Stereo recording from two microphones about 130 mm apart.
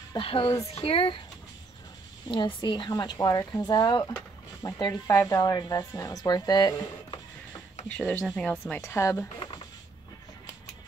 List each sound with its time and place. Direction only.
0.1 s speech: 45° left (ahead or behind)
2.2 s speech: 35° left (ahead or behind)
7.9 s a woman's voice: 10° left (ahead or behind)
9.4 s a sound: 35° left (ahead or behind)